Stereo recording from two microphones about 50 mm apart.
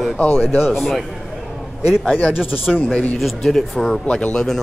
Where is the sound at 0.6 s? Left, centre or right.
Centre.